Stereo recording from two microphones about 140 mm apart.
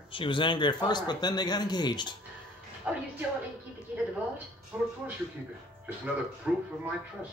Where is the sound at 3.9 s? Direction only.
10° right (ahead or behind).